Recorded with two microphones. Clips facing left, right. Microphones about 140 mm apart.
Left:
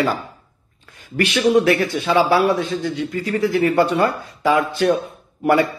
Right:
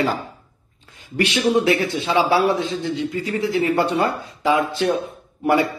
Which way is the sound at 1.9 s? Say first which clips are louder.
Left 2 dB; 25° right (ahead or behind).